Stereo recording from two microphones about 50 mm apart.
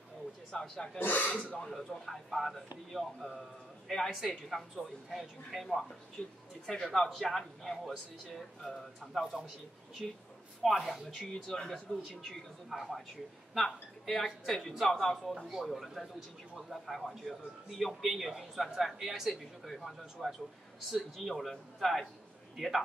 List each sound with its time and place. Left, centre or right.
0.5 s a man's voice: centre
0.9 s speech: left
1.6 s a man's voice: centre
6.2 s speech: left
6.8 s a man's voice: centre